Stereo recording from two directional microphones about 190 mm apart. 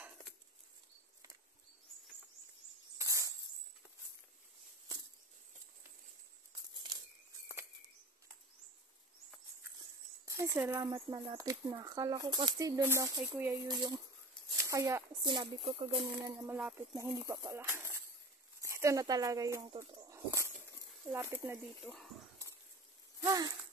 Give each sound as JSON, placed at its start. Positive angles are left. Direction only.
{"t": 3.0, "sound": "cricket", "side_deg": -15}
{"t": 10.2, "sound": "speech", "side_deg": -15}
{"t": 16.3, "sound": "speech", "side_deg": -15}
{"t": 23.2, "sound": "speech", "side_deg": -20}